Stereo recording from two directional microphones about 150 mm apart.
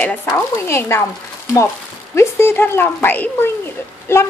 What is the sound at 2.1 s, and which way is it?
Speech, 15° left (ahead or behind).